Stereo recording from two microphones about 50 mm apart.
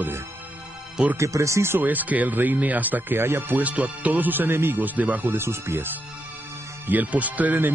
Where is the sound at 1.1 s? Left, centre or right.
Right.